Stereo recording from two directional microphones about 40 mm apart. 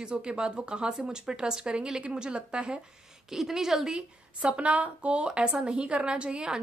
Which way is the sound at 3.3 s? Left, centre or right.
Centre.